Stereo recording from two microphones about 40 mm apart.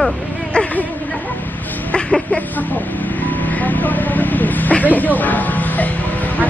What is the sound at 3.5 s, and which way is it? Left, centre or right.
Speech, left.